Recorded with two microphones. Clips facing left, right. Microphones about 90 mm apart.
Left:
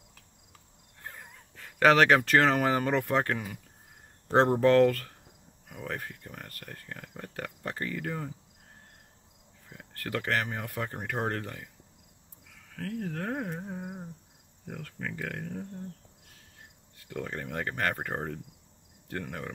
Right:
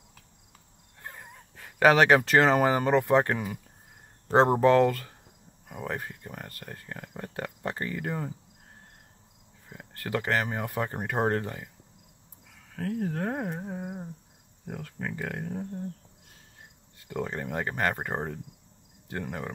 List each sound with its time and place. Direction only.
1.1 s speech: 15° right (ahead or behind)
9.7 s speech: 20° right (ahead or behind)
12.7 s speech: 25° right (ahead or behind)
13.7 s cricket: 5° right (ahead or behind)
14.7 s speech: 10° right (ahead or behind)
17.1 s speech: 20° right (ahead or behind)